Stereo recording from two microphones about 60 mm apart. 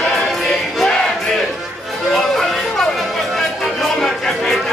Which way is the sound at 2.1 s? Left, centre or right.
Centre.